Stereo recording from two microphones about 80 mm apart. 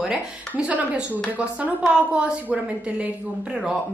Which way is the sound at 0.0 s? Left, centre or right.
Centre.